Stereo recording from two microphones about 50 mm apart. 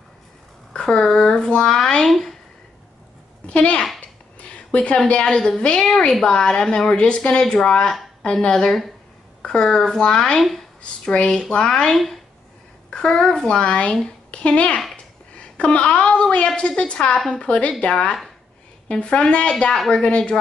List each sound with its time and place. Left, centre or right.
0.7 s speech: centre
3.4 s a child's voice: left
4.0 s a sound: left
4.7 s speech: left
5.2 s a woman's voice: centre